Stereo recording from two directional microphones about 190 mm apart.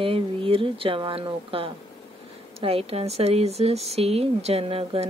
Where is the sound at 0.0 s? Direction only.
30° right (ahead or behind).